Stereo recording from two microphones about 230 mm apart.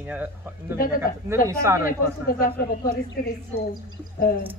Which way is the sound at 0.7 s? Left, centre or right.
Left.